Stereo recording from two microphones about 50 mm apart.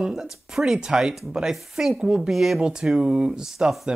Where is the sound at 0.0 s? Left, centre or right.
Centre.